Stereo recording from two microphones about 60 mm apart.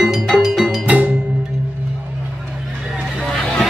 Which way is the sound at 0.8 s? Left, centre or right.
Right.